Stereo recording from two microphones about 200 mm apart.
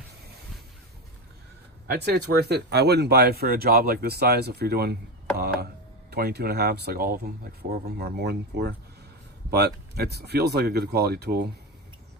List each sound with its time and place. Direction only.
1.9 s speech: 55° right (ahead or behind)